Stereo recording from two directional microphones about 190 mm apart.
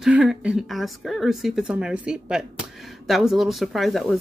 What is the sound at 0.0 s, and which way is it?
Speech, 5° right (ahead or behind).